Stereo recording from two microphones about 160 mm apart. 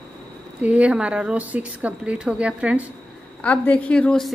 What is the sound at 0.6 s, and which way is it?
A woman's voice, 10° right (ahead or behind).